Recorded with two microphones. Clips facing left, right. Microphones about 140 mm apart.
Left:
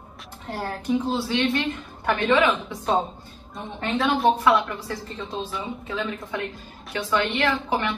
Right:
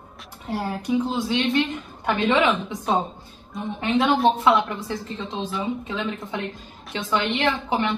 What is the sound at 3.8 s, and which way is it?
A woman's voice, 15° right (ahead or behind).